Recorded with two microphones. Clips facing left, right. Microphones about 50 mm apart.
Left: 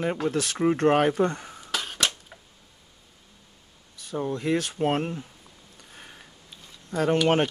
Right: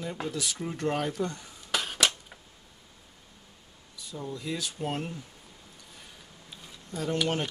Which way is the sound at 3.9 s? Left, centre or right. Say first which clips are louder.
Left 8 dB; left.